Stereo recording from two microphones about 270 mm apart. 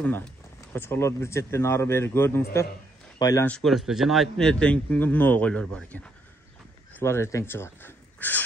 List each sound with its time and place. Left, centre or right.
0.0 s speech: centre